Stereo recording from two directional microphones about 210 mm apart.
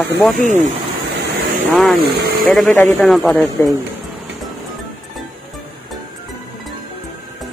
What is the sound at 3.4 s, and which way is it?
Speech, 15° left (ahead or behind).